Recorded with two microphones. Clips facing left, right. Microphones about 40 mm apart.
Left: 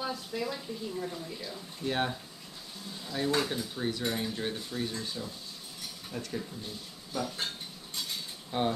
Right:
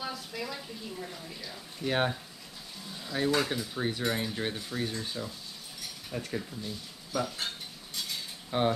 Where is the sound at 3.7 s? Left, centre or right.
Right.